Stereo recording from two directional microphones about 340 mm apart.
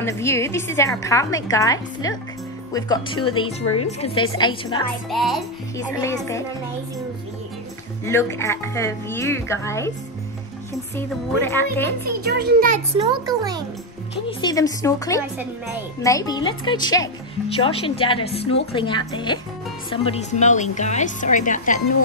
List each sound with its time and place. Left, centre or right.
0.0 s a woman's voice: centre
5.1 s a woman's voice: centre
8.0 s a woman's voice: centre
11.0 s a woman's voice: centre
12.2 s a child's voice: right; by 13.7 s centre
14.4 s a woman's voice: centre